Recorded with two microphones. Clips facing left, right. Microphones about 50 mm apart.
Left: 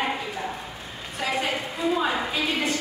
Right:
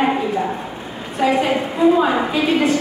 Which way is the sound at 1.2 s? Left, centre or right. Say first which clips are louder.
Right 10 dB; centre.